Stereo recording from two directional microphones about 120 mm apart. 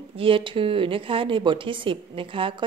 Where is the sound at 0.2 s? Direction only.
45° right (ahead or behind).